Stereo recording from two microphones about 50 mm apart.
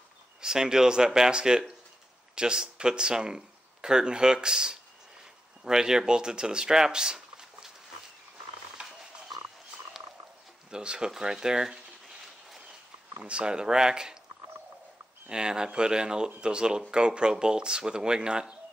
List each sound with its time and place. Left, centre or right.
0.4 s speech: centre
8.8 s wild animals: right
10.7 s speech: centre
13.2 s speech: centre
15.2 s speech: centre